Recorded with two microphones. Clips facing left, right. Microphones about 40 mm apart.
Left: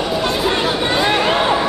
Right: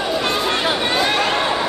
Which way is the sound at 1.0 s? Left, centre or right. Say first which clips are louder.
Left 3 dB; centre.